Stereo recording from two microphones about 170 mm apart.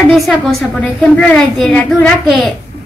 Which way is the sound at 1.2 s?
5° left (ahead or behind).